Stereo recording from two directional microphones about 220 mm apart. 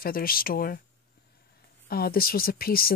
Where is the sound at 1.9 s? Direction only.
45° left (ahead or behind).